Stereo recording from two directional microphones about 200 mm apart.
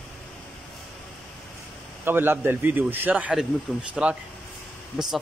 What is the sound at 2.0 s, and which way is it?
A man's voice, 10° right (ahead or behind).